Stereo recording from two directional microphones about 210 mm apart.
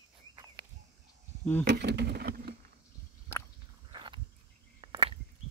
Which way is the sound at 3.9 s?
25° right (ahead or behind).